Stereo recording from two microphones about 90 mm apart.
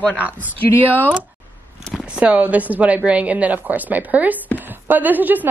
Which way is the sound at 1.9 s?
10° right (ahead or behind).